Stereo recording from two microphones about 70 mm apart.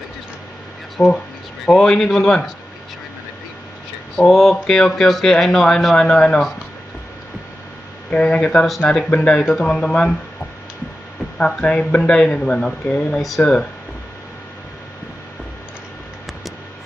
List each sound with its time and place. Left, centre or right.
0.9 s speech: centre
4.3 s speech: centre
5.9 s speech: centre
8.1 s speech: centre
11.3 s speech: centre